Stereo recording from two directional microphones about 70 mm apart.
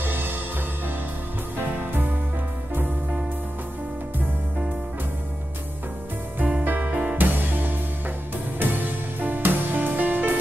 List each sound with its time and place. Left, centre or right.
0.0 s music: right
1.6 s music: right
6.4 s music: right